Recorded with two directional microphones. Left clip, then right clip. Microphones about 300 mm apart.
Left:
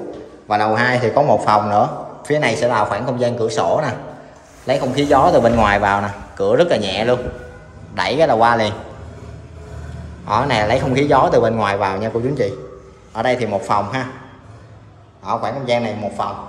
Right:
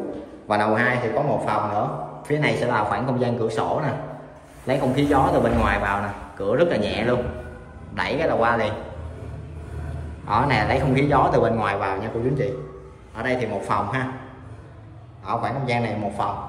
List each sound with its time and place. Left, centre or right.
0.5 s a man's voice: centre
10.2 s a man's voice: centre
15.2 s a man's voice: centre